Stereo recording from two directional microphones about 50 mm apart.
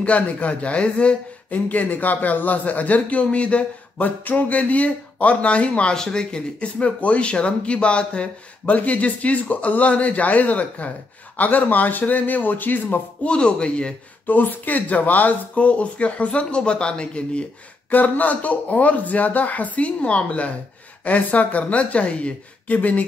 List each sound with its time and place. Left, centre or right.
0.0 s speech: left
1.5 s speech: left
13.3 s speech: centre
14.2 s speech: left
17.8 s speech: left